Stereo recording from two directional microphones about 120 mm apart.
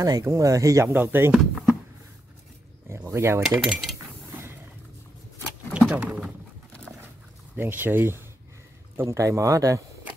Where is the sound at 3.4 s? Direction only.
Centre (ahead or behind).